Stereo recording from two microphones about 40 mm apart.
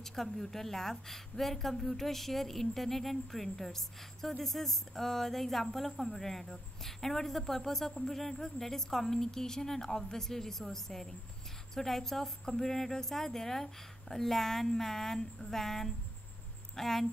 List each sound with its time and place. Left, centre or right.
0.0 s a woman's voice: centre